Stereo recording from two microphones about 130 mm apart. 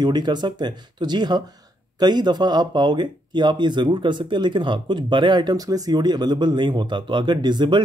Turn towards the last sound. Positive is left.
turn(degrees=-35)  # may be behind; listen again after turning